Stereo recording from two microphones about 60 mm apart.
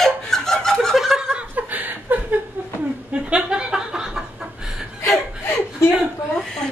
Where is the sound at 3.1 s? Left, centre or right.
Centre.